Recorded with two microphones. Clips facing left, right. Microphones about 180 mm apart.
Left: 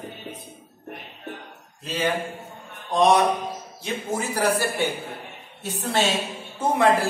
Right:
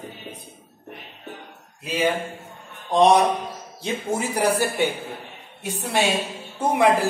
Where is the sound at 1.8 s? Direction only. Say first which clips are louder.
Right 3 dB; 10° right (ahead or behind).